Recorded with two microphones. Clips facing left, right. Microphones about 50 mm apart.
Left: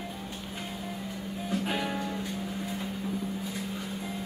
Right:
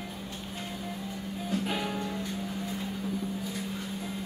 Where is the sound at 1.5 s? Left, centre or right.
Centre.